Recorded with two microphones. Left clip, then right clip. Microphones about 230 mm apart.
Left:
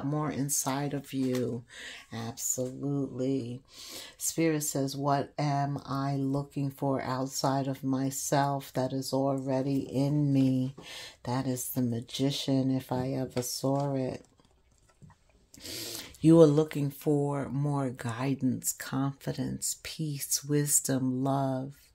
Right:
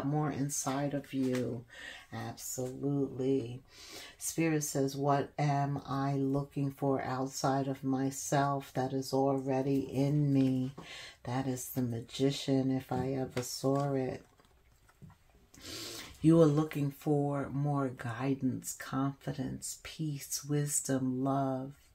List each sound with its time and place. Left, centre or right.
0.1 s speech: left
15.6 s speech: left